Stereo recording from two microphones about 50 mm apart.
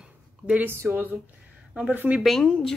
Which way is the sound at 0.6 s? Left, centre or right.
Right.